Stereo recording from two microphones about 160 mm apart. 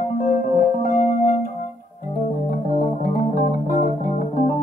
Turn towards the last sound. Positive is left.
turn(degrees=55)  # may be behind; listen again after turning